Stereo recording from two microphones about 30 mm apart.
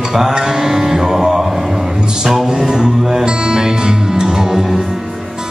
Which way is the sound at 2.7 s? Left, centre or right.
Right.